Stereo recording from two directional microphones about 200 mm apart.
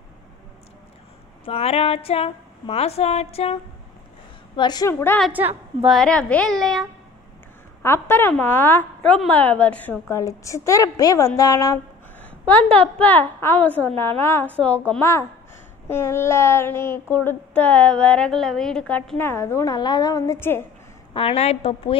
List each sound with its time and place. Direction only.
1.4 s a woman's voice: 30° left (ahead or behind)
4.6 s a woman's voice: 20° left (ahead or behind)
5.2 s a woman's voice: 10° right (ahead or behind)
5.9 s a woman's voice: 5° left (ahead or behind)
7.8 s a woman's voice: 10° left (ahead or behind)
21.1 s a woman's voice: 25° left (ahead or behind)